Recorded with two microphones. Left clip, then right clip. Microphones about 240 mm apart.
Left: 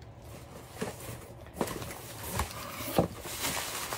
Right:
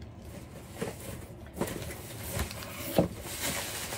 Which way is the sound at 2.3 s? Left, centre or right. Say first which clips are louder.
Left 2 dB; left.